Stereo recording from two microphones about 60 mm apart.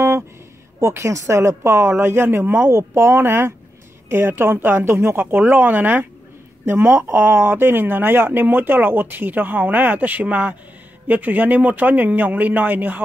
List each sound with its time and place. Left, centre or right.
0.7 s speech: right